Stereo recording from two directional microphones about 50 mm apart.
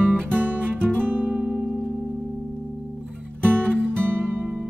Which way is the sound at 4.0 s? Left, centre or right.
Right.